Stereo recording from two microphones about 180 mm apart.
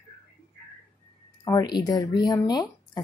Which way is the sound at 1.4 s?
20° left (ahead or behind).